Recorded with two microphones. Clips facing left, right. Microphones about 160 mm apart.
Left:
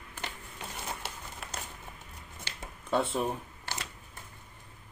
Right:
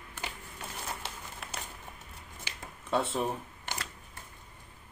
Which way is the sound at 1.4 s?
Centre (ahead or behind).